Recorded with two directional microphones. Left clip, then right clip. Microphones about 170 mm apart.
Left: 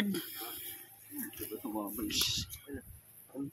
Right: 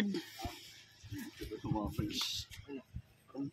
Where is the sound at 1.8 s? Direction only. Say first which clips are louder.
Left 4 dB; 5° right (ahead or behind).